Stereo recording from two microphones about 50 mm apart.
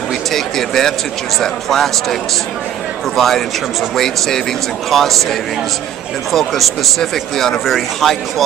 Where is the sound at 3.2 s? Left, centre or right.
Centre.